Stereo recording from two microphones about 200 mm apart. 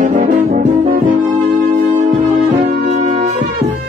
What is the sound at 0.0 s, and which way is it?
Brass instrument, 40° right (ahead or behind).